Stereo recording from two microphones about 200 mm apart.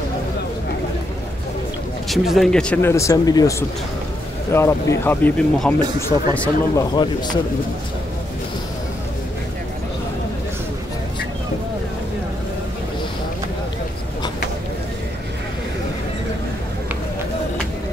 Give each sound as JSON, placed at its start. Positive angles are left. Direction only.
{"t": 2.0, "sound": "speech", "side_deg": 0}